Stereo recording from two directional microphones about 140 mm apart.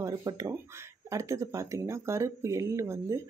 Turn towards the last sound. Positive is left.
turn(degrees=-20)  # may be behind; listen again after turning